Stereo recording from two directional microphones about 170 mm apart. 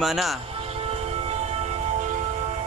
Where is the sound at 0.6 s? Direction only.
35° right (ahead or behind).